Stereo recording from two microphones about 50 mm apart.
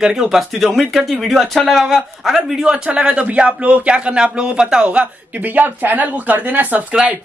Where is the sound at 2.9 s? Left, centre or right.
Centre.